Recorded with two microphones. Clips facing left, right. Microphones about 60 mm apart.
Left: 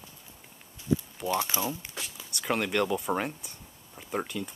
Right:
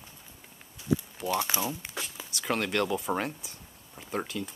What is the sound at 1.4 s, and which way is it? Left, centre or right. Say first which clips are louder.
Speech: even; right.